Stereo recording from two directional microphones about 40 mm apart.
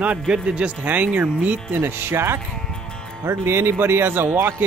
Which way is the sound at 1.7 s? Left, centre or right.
Right.